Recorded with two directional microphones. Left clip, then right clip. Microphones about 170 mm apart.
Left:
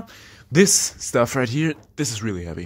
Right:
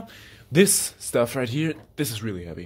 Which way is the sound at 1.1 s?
25° left (ahead or behind).